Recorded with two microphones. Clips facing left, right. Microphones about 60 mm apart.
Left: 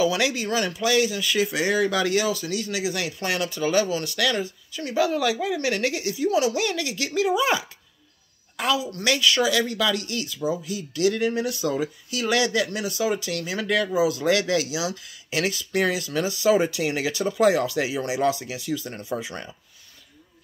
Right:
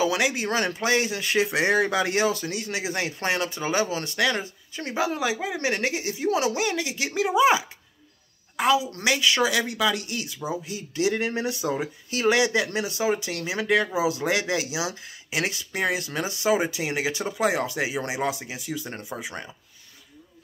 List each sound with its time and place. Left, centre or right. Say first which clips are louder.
0.0 s speech: left 1 dB; right
0.5 s speech: left 1 dB; right
5.0 s a woman's voice: left 2 dB; right
12.4 s speech: even; right
16.5 s speech: left 3 dB; centre
19.0 s speech: left 4 dB; centre